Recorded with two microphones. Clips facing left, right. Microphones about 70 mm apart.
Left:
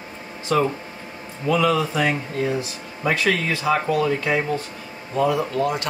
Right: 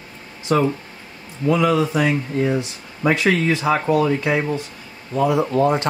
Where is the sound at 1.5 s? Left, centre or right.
Centre.